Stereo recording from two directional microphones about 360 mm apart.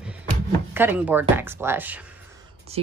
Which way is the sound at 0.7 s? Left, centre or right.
Centre.